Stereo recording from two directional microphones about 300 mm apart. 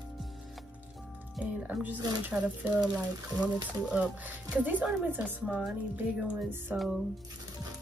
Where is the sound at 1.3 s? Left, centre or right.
Centre.